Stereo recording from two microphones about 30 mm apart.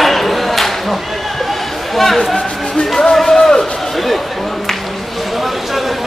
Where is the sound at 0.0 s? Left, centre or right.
Centre.